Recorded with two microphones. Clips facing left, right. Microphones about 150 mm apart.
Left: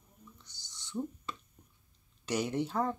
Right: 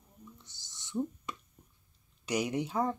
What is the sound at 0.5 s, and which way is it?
Owl, 20° right (ahead or behind).